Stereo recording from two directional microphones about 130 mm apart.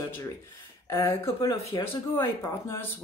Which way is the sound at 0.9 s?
20° left (ahead or behind).